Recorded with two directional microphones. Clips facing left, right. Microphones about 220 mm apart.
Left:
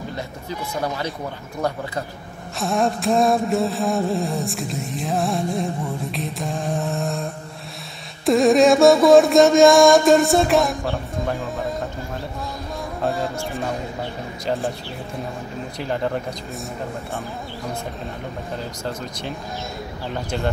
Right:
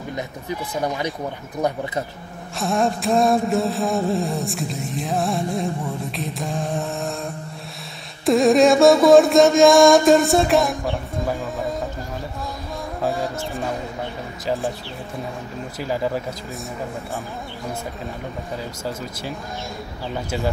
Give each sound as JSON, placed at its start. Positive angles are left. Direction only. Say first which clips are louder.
{"t": 0.8, "sound": "speech", "louder": "right 3 dB", "side_deg": -15}
{"t": 2.6, "sound": "music", "louder": "even", "side_deg": 0}
{"t": 8.3, "sound": "music", "louder": "even", "side_deg": 0}
{"t": 13.0, "sound": "music", "louder": "even", "side_deg": 0}
{"t": 15.8, "sound": "music", "louder": "even", "side_deg": -5}
{"t": 18.9, "sound": "speech", "louder": "even", "side_deg": -5}